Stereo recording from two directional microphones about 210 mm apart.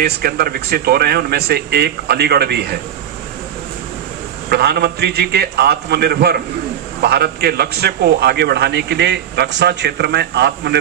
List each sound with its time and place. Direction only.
0.0 s a man's voice: 45° right (ahead or behind)
4.5 s a man's voice: 50° right (ahead or behind)